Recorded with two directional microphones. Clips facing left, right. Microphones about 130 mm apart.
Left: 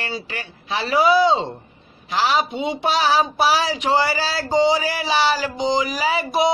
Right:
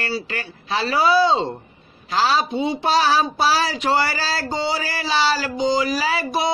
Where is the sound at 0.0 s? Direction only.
15° left (ahead or behind).